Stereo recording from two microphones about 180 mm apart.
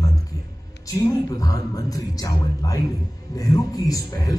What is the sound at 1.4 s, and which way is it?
A man's voice, 20° left (ahead or behind).